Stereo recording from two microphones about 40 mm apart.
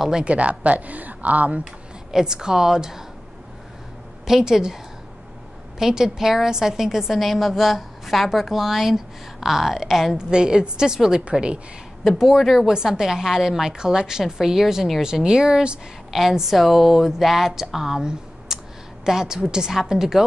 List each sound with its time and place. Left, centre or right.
0.2 s speech: right
1.6 s speech: centre
4.3 s a woman's voice: centre
5.8 s a woman's voice: centre
7.2 s a woman's voice: centre
10.1 s a woman's voice: right
12.0 s a woman's voice: centre
12.6 s a woman's voice: centre
16.1 s a woman's voice: centre